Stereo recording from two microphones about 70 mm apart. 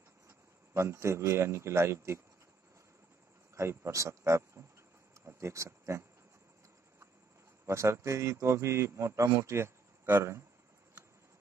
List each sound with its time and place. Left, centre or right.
0.3 s a man's voice: right
3.5 s speech: right
7.6 s a man's voice: right